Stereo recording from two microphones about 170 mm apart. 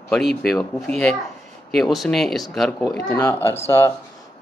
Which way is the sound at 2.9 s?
15° left (ahead or behind).